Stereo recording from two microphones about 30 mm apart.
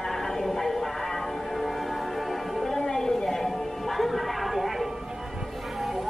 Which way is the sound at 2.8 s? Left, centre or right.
Centre.